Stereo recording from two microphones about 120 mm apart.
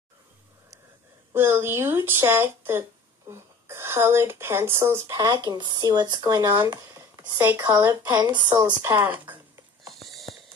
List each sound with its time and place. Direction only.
1.3 s speech: 20° right (ahead or behind)
8.3 s speech: 40° right (ahead or behind)
8.8 s speech: 20° right (ahead or behind)